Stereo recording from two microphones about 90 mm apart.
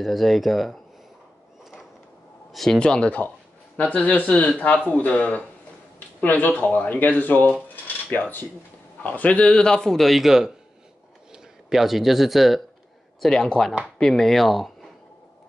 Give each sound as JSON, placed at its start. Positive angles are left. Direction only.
{"t": 0.0, "sound": "speech", "side_deg": 0}
{"t": 2.5, "sound": "speech", "side_deg": 5}